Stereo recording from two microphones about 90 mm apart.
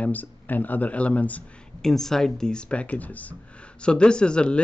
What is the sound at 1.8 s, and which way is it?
Speech, 5° left (ahead or behind).